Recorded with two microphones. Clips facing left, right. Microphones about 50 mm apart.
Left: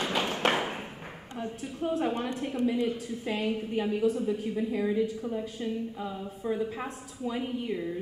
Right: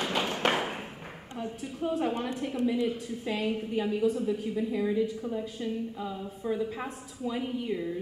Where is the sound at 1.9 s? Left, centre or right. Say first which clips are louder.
Even; centre.